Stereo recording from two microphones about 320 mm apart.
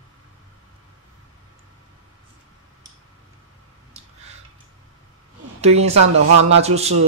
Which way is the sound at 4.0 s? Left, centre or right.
Right.